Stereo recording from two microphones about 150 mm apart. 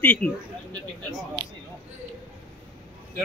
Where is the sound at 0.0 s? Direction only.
10° left (ahead or behind).